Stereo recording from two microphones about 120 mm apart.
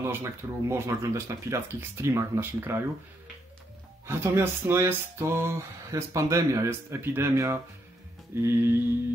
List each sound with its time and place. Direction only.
0.0 s speech: 20° right (ahead or behind)
4.0 s speech: 20° right (ahead or behind)